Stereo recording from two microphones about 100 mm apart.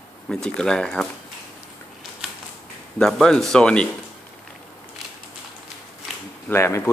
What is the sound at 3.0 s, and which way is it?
Speech, 5° left (ahead or behind).